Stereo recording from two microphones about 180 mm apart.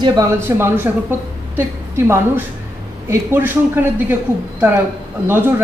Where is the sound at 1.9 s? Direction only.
15° right (ahead or behind).